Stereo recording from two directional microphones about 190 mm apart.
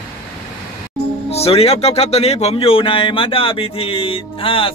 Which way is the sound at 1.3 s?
30° left (ahead or behind).